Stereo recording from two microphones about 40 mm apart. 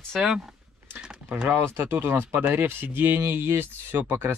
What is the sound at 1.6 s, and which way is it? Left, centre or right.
Speech, right.